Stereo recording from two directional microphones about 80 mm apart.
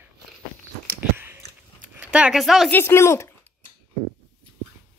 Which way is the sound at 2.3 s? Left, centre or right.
Centre.